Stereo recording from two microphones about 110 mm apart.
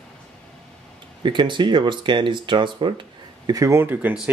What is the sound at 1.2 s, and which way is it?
Speech, 45° right (ahead or behind).